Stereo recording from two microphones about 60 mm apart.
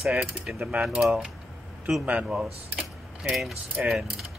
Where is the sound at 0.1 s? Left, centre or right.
Centre.